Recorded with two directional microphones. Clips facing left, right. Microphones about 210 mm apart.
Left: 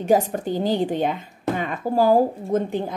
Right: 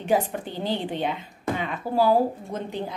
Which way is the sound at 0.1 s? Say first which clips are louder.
Left 5 dB; 45° left (ahead or behind).